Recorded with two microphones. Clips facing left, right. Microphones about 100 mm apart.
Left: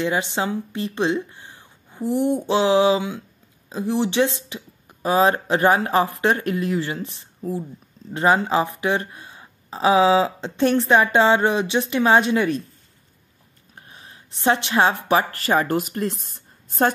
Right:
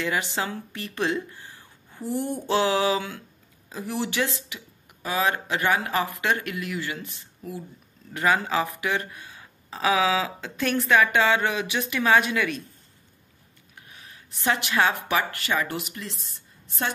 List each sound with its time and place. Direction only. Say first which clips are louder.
0.0 s speech: left 5 dB; 25° left (ahead or behind)
13.7 s speech: left 3 dB; 30° left (ahead or behind)